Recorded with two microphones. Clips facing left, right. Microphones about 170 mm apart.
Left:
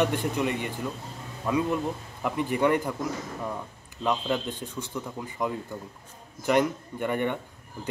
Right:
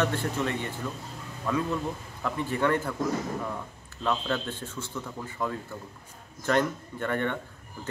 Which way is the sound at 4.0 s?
15° left (ahead or behind).